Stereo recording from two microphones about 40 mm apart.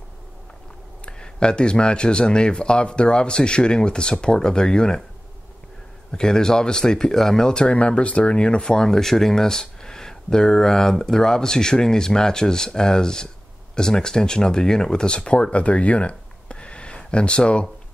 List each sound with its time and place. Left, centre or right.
1.0 s speech: left
6.1 s speech: centre
8.6 s speech: centre